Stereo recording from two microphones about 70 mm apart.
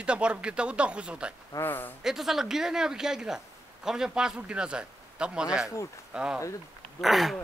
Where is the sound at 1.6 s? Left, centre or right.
Left.